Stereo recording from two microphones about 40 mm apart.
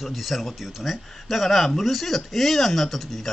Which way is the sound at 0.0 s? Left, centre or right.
Centre.